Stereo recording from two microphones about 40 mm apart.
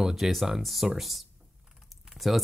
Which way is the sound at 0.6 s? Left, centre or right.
Centre.